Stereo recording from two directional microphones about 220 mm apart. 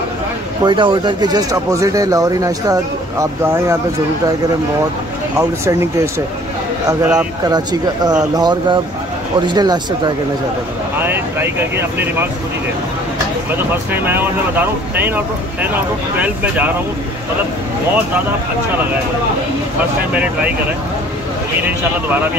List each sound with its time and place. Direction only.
0.7 s speech: 20° right (ahead or behind)
5.4 s speech: 15° right (ahead or behind)
6.9 s speech: 10° right (ahead or behind)
13.9 s speech: 10° right (ahead or behind)
21.6 s speech: 10° right (ahead or behind)